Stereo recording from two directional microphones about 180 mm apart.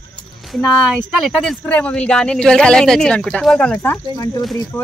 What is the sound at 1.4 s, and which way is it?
Speech, 5° left (ahead or behind).